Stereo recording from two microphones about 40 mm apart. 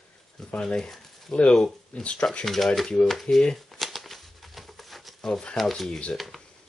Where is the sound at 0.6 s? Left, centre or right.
Centre.